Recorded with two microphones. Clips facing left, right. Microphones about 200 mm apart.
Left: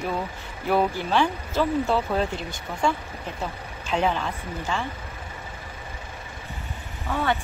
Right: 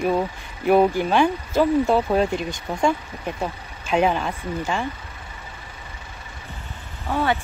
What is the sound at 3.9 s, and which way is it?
Speech, 15° right (ahead or behind).